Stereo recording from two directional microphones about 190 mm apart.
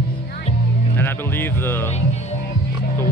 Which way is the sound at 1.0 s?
10° left (ahead or behind).